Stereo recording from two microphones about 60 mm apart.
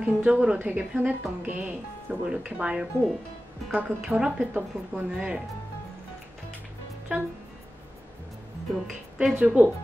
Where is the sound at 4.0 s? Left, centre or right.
Centre.